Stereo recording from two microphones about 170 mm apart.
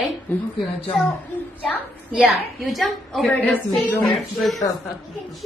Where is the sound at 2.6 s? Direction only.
Centre (ahead or behind).